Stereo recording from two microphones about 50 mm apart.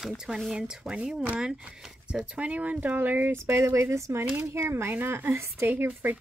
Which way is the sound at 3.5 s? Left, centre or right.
Right.